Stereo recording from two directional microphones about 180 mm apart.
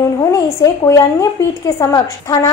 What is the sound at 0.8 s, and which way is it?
A woman's voice, 15° left (ahead or behind).